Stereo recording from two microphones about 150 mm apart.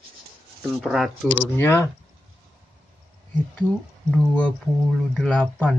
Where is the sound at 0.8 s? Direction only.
Centre (ahead or behind).